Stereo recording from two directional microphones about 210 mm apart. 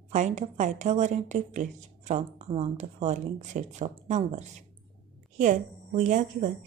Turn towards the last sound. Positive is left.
turn(degrees=-35)  # may be behind; listen again after turning